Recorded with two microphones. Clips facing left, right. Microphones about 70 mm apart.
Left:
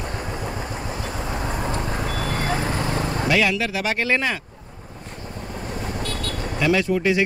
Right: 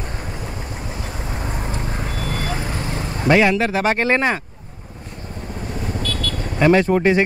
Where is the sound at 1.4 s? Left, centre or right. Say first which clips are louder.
Left 1 dB; left.